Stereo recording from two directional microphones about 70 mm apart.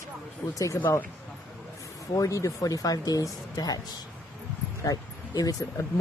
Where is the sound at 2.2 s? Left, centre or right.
Left.